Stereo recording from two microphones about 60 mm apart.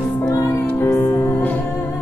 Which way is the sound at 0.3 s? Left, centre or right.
Left.